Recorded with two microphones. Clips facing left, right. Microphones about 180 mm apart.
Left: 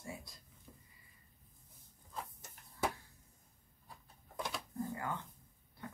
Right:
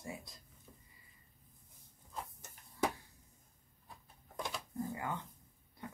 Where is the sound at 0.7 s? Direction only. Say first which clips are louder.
Left 1 dB; 10° left (ahead or behind).